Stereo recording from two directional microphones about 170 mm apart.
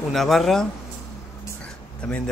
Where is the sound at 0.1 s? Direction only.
Centre (ahead or behind).